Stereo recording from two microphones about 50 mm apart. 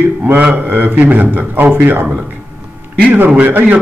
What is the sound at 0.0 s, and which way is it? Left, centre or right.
A man's voice, right.